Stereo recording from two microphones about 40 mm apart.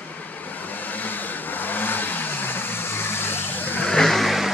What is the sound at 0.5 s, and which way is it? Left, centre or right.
Vehicle, left.